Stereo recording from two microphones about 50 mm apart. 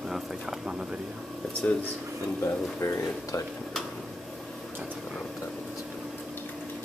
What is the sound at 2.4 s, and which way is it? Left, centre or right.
Speech, left.